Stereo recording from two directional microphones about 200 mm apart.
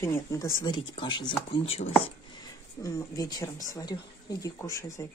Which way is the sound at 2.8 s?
15° left (ahead or behind).